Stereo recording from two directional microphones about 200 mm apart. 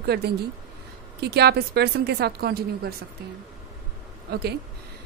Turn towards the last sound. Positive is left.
turn(degrees=-55)  # may be behind; listen again after turning